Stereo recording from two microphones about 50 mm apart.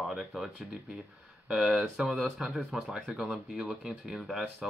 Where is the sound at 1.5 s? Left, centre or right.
Centre.